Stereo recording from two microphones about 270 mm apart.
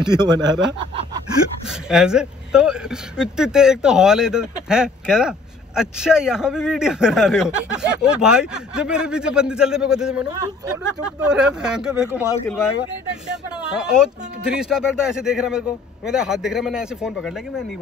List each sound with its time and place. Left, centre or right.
0.0 s speech: centre
1.7 s a man's voice: centre
11.2 s a man's voice: centre
12.3 s speech: centre
13.1 s a man's voice: centre